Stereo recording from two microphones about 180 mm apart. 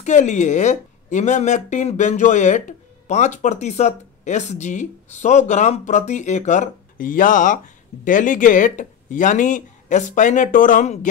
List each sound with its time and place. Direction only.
0.0 s a woman's voice: 40° left (ahead or behind)